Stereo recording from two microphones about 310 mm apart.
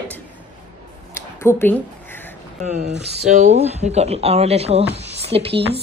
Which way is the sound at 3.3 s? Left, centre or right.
Right.